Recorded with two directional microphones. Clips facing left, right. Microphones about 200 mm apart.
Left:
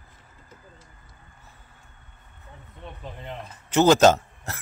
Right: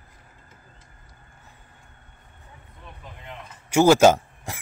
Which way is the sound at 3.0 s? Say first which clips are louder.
Left 4 dB; 35° left (ahead or behind).